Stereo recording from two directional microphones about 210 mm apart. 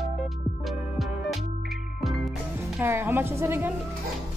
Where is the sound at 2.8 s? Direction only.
10° right (ahead or behind).